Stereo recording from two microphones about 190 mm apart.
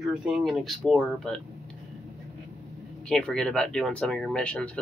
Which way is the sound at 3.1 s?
5° left (ahead or behind).